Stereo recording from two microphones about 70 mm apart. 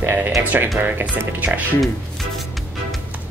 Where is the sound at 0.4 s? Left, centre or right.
Right.